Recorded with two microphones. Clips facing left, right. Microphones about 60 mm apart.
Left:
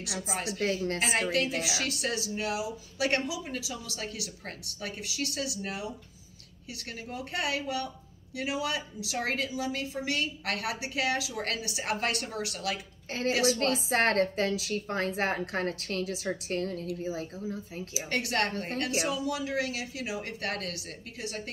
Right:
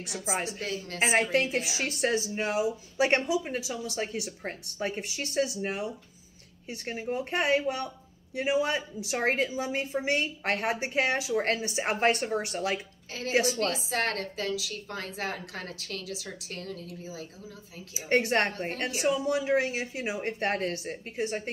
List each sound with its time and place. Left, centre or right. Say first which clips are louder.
0.3 s speech: right 4 dB; right
0.6 s a woman's voice: left 6 dB; left
0.9 s a woman's voice: right 3 dB; right
13.7 s a woman's voice: left 5 dB; left
18.0 s a woman's voice: right 5 dB; right